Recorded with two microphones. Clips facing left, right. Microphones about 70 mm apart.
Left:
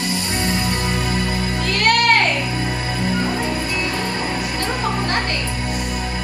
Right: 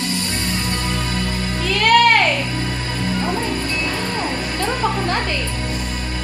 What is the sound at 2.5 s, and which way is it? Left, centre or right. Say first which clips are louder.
Music: left 1 dB; centre.